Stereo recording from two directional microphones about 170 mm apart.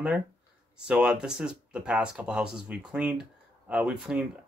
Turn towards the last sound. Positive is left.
turn(degrees=-5)  # may be behind; listen again after turning